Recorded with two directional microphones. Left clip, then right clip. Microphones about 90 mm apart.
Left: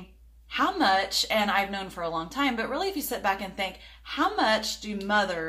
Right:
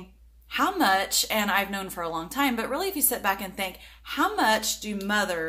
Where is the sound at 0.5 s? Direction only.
20° right (ahead or behind).